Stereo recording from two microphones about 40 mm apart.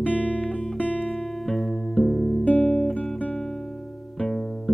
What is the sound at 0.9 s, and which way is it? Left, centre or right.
Music, centre.